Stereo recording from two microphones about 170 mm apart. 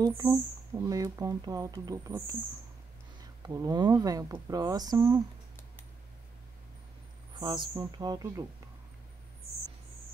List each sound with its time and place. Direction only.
0.3 s speech: 20° right (ahead or behind)
3.4 s speech: 25° right (ahead or behind)
7.3 s speech: 25° right (ahead or behind)